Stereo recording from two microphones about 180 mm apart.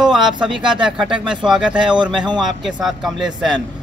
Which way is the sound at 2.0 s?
25° right (ahead or behind).